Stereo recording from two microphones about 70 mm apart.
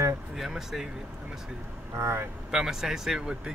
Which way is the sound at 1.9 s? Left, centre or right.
Right.